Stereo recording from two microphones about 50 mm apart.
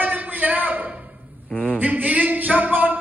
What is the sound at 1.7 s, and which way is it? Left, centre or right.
A man's voice, right.